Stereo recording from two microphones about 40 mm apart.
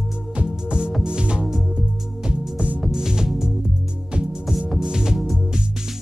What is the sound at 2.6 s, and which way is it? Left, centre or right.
Music, right.